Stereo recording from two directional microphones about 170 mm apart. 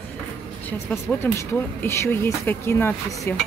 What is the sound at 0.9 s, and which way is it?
Speech, 10° left (ahead or behind).